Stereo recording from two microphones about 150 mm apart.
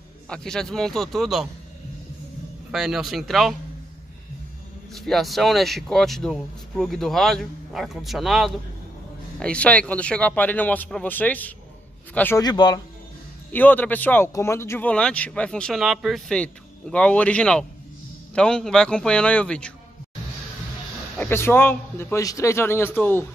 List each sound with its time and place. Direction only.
0.3 s speech: 5° left (ahead or behind)
2.7 s speech: centre (ahead or behind)
4.9 s speech: centre (ahead or behind)
12.4 s speech: 30° left (ahead or behind)
13.5 s speech: 10° left (ahead or behind)
21.2 s speech: 15° left (ahead or behind)